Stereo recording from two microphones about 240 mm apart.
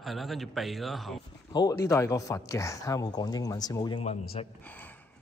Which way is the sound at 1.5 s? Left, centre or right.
Centre.